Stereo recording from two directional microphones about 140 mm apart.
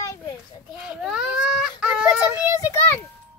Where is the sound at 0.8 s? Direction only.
5° right (ahead or behind).